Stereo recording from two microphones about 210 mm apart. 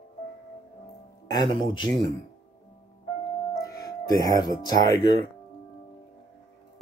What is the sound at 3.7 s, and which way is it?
Speech, 15° left (ahead or behind).